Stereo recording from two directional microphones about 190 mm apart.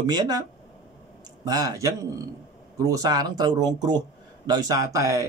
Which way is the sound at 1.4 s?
20° right (ahead or behind).